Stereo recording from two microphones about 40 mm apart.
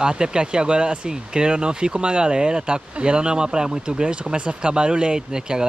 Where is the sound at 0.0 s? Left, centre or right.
Right.